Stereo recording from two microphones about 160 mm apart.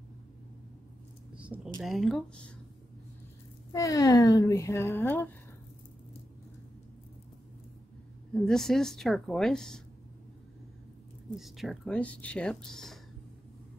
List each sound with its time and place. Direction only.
1.3 s speech: 10° right (ahead or behind)
3.7 s a woman's voice: 20° left (ahead or behind)
8.3 s speech: 5° left (ahead or behind)
11.3 s speech: centre (ahead or behind)